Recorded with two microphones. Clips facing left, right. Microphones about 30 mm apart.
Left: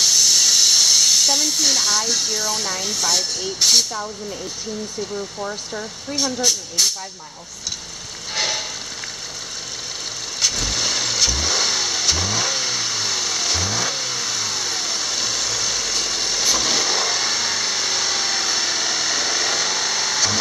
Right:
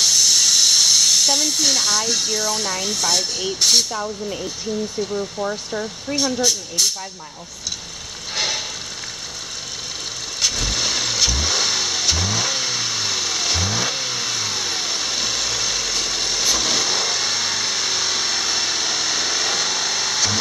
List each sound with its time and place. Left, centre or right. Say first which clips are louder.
0.0 s speech: even; centre
5.1 s speech: right 3 dB; centre
8.4 s rain on surface: even; centre
10.4 s vehicle: even; centre